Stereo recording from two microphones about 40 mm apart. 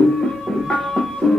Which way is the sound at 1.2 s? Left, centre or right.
Centre.